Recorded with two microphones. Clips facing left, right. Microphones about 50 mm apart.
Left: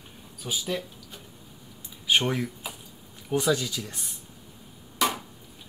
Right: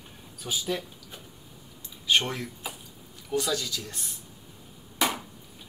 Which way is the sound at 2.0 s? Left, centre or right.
Centre.